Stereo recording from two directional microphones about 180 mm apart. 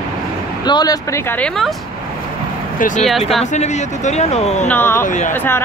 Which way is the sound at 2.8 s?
50° left (ahead or behind).